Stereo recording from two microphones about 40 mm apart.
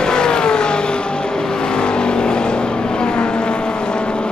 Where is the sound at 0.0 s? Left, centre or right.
Centre.